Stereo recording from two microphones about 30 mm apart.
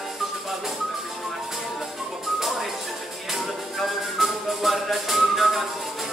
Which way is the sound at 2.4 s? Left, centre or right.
Centre.